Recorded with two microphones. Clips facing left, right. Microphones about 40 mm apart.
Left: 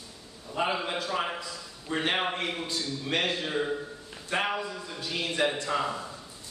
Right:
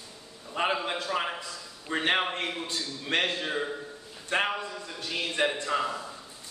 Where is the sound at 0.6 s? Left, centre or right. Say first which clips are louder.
Even; right.